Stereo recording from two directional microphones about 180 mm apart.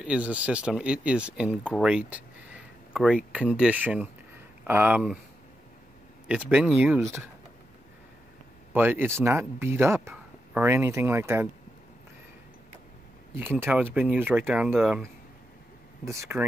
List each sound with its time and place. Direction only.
0.0 s speech: 5° right (ahead or behind)
6.2 s speech: 10° right (ahead or behind)
8.7 s speech: 10° right (ahead or behind)
13.4 s speech: 10° right (ahead or behind)
16.1 s speech: 15° right (ahead or behind)